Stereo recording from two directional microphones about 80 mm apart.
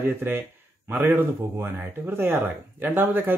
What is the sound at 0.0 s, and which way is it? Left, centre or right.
Speech, right.